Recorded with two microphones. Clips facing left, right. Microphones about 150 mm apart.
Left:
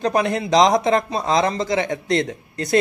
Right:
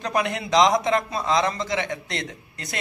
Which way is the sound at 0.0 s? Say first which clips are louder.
Left 5 dB; 35° left (ahead or behind).